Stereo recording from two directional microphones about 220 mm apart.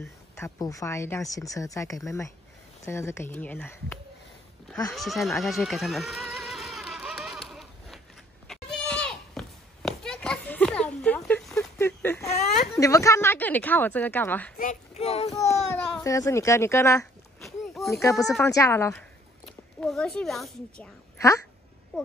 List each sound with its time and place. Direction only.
0.0 s speech: 15° left (ahead or behind)
4.9 s a sound: centre (ahead or behind)
14.6 s a child's voice: 30° left (ahead or behind)
15.4 s a woman's voice: 10° left (ahead or behind)